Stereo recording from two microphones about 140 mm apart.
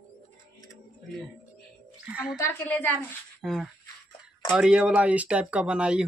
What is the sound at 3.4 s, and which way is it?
Speech, centre (ahead or behind).